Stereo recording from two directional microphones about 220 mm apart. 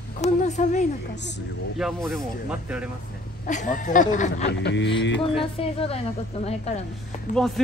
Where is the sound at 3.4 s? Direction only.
35° left (ahead or behind).